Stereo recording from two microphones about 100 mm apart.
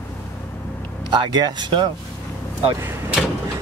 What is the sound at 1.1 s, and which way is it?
Speech, 45° right (ahead or behind).